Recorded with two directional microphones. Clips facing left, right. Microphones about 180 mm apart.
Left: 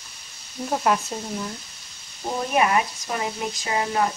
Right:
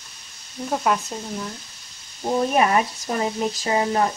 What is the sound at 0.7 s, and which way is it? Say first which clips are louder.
Speech: even; 5° left (ahead or behind).